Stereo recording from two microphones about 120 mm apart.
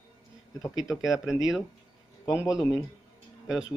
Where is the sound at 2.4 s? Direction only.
30° left (ahead or behind).